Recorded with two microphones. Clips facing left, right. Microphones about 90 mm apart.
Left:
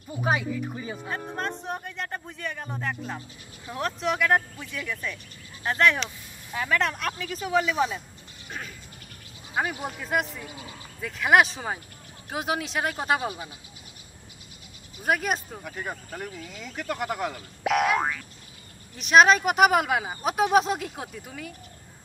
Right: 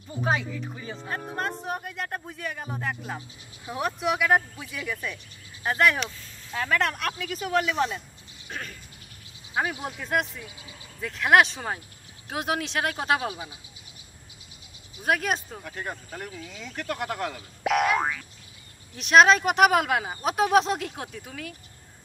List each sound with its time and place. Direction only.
0.2 s speech: 10° left (ahead or behind)
1.0 s speech: 5° right (ahead or behind)
6.0 s speech: 5° left (ahead or behind)
9.8 s speech: centre (ahead or behind)
10.4 s speech: 50° left (ahead or behind)
11.0 s speech: centre (ahead or behind)
15.0 s speech: centre (ahead or behind)